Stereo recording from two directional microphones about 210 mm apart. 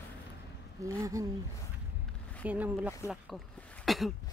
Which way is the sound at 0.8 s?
15° right (ahead or behind).